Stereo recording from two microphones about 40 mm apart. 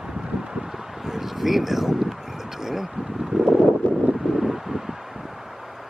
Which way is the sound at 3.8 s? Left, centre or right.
Left.